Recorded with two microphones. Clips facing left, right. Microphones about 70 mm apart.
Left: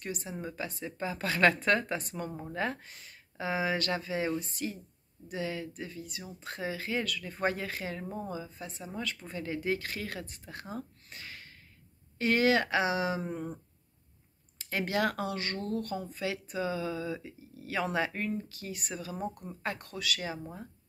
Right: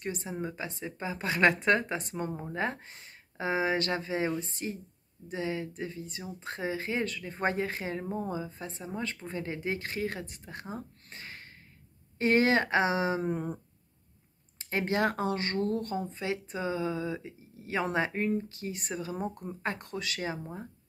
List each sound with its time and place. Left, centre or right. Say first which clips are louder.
0.0 s speech: right 3 dB; right
14.6 s speech: right 2 dB; right